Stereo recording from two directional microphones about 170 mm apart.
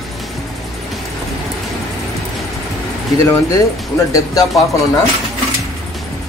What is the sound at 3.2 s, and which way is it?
Speech, 15° left (ahead or behind).